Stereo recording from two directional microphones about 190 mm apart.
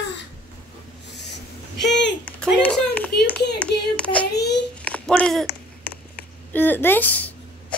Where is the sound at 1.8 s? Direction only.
65° left (ahead or behind).